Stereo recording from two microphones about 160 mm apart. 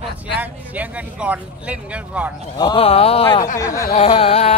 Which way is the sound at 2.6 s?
30° left (ahead or behind).